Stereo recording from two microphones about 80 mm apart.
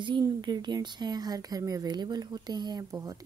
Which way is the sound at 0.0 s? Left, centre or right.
Right.